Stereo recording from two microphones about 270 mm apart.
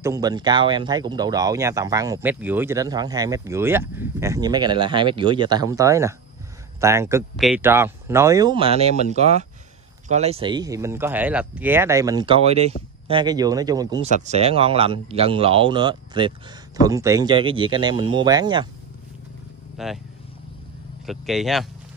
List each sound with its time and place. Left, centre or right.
0.0 s speech: centre
14.1 s speech: right
19.8 s speech: centre
21.0 s speech: centre